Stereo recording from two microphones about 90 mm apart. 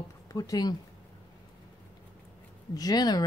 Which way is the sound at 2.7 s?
45° left (ahead or behind).